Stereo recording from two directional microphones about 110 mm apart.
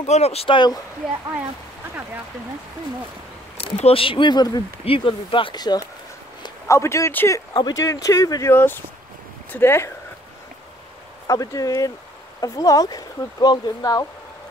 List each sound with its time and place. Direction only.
0.0 s speech: 80° left
0.5 s speech: 40° left (ahead or behind)
3.5 s speech: 60° left (ahead or behind); by 4.6 s 40° left (ahead or behind)
4.8 s speech: 50° left (ahead or behind)
6.7 s speech: 25° left (ahead or behind)
7.3 s speech: 35° left (ahead or behind)
11.2 s speech: 30° left (ahead or behind)